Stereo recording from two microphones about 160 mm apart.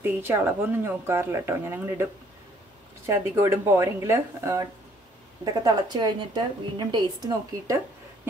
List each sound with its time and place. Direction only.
0.0 s speech: 15° right (ahead or behind)
3.1 s a woman's voice: 15° right (ahead or behind)